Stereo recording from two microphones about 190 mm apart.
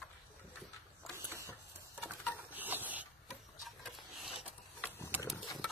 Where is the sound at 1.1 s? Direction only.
15° right (ahead or behind).